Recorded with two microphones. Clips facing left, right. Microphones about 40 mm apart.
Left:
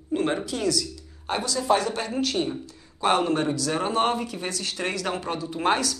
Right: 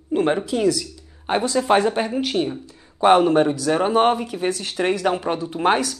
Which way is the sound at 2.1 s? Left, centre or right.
Centre.